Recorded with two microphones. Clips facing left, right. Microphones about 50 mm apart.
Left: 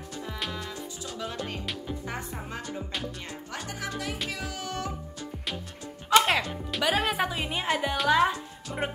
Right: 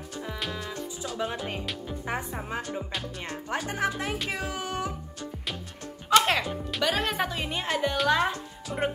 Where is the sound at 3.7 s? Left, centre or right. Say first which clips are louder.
Right 3 dB; right.